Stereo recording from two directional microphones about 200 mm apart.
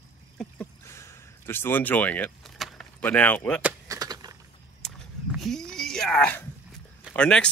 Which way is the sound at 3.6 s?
10° right (ahead or behind).